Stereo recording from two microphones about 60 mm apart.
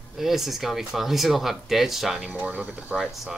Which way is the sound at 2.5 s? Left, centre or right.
Right.